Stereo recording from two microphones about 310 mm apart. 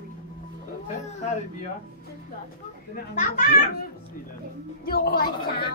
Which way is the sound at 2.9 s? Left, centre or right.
Left.